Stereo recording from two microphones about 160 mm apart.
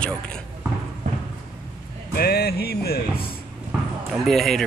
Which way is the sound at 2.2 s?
80° left.